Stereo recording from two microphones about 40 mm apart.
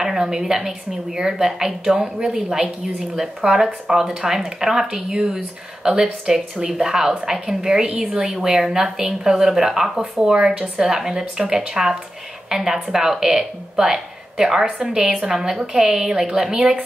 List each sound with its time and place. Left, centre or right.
0.0 s a woman's voice: centre